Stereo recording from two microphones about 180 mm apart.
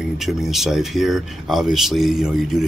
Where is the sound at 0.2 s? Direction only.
Centre (ahead or behind).